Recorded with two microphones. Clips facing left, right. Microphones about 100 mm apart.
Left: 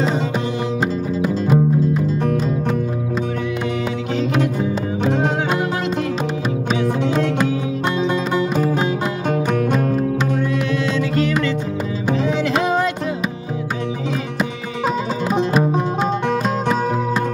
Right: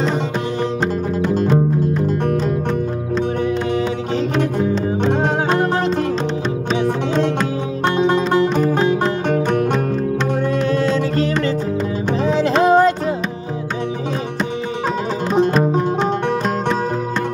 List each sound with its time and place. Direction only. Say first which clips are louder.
8.5 s music: right 3 dB; 5° left (ahead or behind)
10.7 s music: right 3 dB; 40° right (ahead or behind)